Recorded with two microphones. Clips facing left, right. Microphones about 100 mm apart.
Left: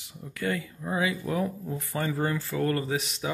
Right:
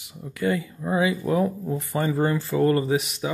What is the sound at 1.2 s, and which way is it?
Speech, 35° right (ahead or behind).